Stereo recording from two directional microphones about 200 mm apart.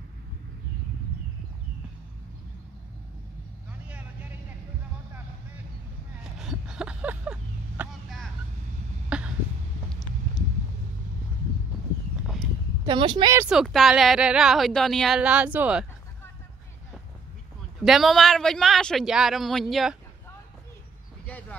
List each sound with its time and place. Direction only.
6.3 s vehicle: centre (ahead or behind)
9.1 s cough: 5° right (ahead or behind)
12.8 s a woman's voice: 20° right (ahead or behind)
13.4 s speech: 5° right (ahead or behind)
17.8 s speech: centre (ahead or behind)
21.3 s a sound: 10° left (ahead or behind)